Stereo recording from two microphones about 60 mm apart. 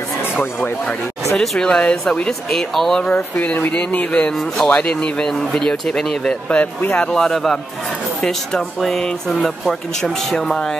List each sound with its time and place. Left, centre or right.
1.4 s speech: centre
3.2 s speech: left
5.7 s speech: centre
6.5 s speech: left
7.2 s a man's voice: centre